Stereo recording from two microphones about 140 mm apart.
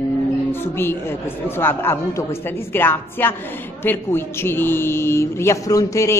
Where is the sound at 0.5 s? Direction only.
15° left (ahead or behind).